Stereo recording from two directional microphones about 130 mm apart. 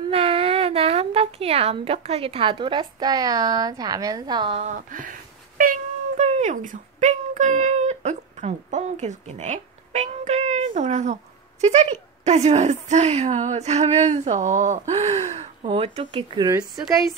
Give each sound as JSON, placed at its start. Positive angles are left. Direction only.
{"t": 0.1, "sound": "a woman's voice", "side_deg": -45}
{"t": 4.6, "sound": "a woman's voice", "side_deg": -70}
{"t": 16.4, "sound": "a woman's voice", "side_deg": -30}